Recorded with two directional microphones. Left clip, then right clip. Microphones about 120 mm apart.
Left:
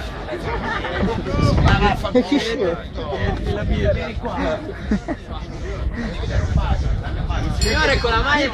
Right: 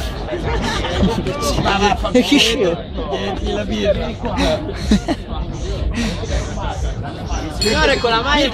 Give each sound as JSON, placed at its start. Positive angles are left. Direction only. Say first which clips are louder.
{"t": 0.7, "sound": "speech", "louder": "right 3 dB", "side_deg": -5}
{"t": 1.7, "sound": "speech", "louder": "right 4 dB", "side_deg": 45}
{"t": 2.1, "sound": "speech", "louder": "right 5 dB", "side_deg": 0}
{"t": 4.4, "sound": "speech", "louder": "right 6 dB", "side_deg": -10}
{"t": 7.7, "sound": "speech", "louder": "right 3 dB", "side_deg": 30}